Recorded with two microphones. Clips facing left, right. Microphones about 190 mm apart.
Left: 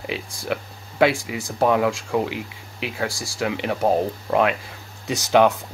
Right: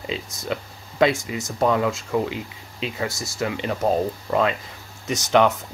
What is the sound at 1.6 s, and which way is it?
Speech, 15° left (ahead or behind).